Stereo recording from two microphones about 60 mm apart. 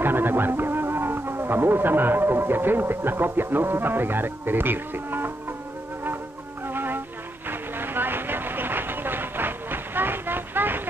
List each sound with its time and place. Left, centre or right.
0.0 s speech: right
6.7 s music: right
7.4 s vehicle: right